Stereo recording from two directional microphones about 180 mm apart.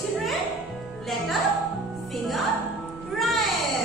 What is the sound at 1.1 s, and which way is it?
Speech, centre (ahead or behind).